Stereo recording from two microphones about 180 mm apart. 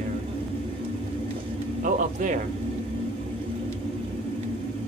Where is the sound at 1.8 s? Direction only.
45° right (ahead or behind).